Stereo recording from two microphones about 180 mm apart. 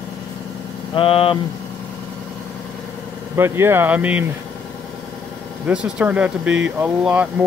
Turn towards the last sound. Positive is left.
turn(degrees=-5)  # may be behind; listen again after turning